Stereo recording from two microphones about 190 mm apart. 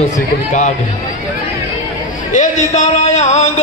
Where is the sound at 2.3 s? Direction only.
40° left (ahead or behind).